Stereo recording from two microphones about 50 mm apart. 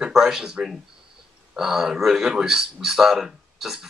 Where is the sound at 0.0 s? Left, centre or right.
Centre.